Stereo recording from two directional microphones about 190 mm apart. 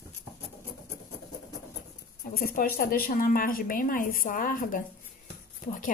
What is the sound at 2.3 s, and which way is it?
A woman's voice, 50° left (ahead or behind).